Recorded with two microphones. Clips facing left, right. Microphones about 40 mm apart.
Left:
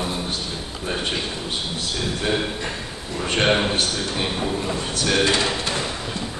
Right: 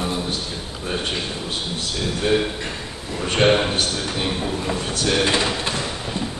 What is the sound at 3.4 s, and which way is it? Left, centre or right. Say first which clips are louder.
Speech: right 3 dB; centre.